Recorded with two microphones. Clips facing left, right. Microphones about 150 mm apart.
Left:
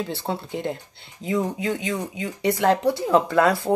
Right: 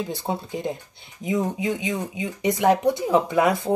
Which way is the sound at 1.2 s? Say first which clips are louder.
Even; 15° right (ahead or behind).